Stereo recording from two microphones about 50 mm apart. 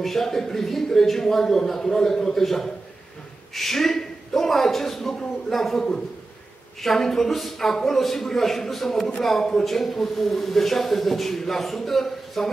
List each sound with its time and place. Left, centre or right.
0.0 s a man's voice: centre